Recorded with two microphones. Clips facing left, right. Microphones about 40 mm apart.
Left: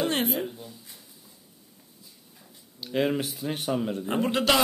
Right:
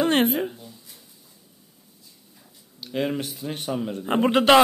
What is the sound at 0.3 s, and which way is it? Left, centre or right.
Speech, centre.